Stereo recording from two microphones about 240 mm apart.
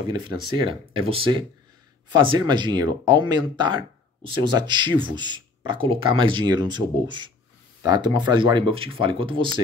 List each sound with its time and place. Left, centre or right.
0.0 s speech: centre